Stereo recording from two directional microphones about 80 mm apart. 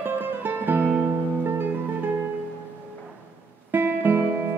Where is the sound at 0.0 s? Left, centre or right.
Right.